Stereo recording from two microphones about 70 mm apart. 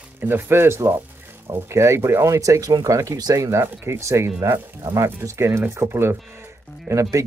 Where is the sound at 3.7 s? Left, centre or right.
Right.